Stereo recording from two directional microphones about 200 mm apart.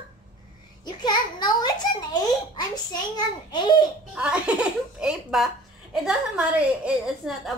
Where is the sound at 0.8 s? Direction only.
20° left (ahead or behind).